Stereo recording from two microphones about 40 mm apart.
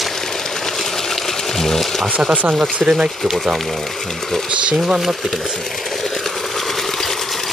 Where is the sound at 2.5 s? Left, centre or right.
Right.